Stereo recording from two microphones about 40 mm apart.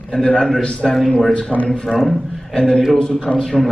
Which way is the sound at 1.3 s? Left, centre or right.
Left.